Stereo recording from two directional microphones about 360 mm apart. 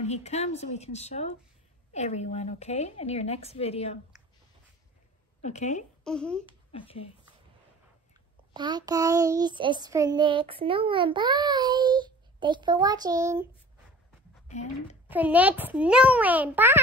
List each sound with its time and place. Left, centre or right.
0.0 s speech: centre
5.4 s speech: centre
6.0 s a child's voice: centre
6.7 s speech: centre
8.5 s child singing: centre
15.0 s a child's voice: centre